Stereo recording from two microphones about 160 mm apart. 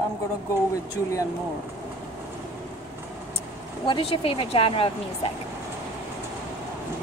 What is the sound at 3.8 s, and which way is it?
Speech, 30° left (ahead or behind).